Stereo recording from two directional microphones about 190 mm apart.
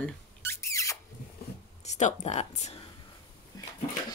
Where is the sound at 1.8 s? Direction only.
35° left (ahead or behind).